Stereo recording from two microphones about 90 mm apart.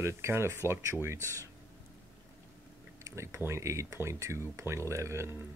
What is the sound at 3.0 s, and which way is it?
Speech, 35° right (ahead or behind).